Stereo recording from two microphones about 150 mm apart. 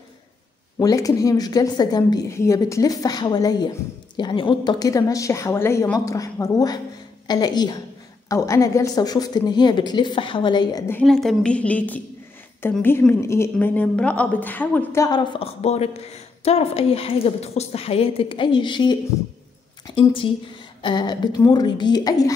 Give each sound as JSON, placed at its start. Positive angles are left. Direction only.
{"t": 0.7, "sound": "a woman's voice", "side_deg": 25}
{"t": 10.9, "sound": "a woman's voice", "side_deg": 5}
{"t": 15.0, "sound": "a woman's voice", "side_deg": 30}
{"t": 15.4, "sound": "a woman's voice", "side_deg": 45}
{"t": 20.0, "sound": "a woman's voice", "side_deg": 35}